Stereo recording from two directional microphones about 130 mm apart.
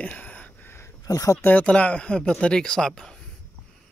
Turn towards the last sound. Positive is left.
turn(degrees=5)  # may be behind; listen again after turning